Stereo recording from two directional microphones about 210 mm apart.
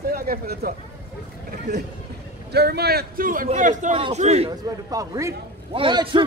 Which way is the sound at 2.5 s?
50° right (ahead or behind).